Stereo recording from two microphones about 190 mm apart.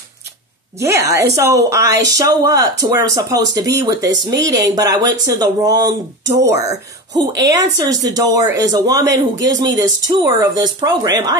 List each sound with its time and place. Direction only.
0.7 s a woman's voice: 15° right (ahead or behind)